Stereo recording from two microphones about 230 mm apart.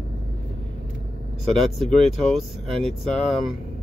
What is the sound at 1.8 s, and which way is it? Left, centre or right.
Speech, centre.